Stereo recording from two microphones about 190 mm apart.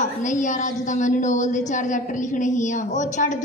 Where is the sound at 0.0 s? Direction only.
40° left (ahead or behind).